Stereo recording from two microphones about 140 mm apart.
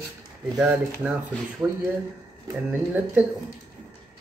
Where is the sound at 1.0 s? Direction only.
5° right (ahead or behind).